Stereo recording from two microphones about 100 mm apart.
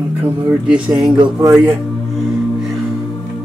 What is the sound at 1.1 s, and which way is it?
Speech, 50° right (ahead or behind).